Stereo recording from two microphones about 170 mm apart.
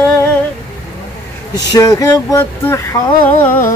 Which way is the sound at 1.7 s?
20° left (ahead or behind).